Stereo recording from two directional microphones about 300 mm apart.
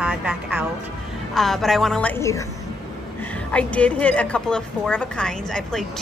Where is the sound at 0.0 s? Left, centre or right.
Centre.